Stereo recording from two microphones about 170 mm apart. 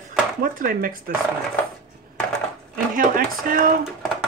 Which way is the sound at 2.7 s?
55° right (ahead or behind).